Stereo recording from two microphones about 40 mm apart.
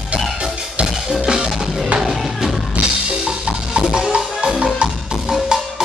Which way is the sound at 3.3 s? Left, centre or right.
Right.